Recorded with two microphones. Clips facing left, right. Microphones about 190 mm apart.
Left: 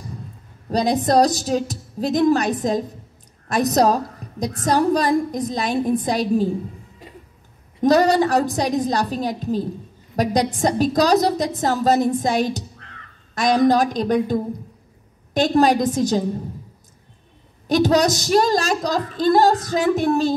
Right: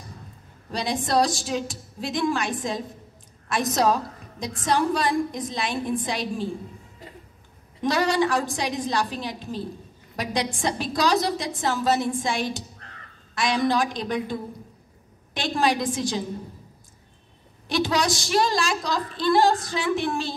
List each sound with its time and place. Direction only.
0.7 s a woman's voice: 40° left (ahead or behind)
7.8 s a woman's voice: 40° left (ahead or behind)
17.6 s a woman's voice: 40° left (ahead or behind)